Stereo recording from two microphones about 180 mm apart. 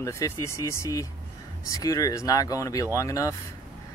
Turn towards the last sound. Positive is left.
turn(degrees=20)  # may be behind; listen again after turning